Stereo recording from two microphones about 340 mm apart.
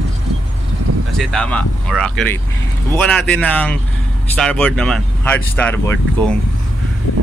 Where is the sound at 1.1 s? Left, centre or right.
Centre.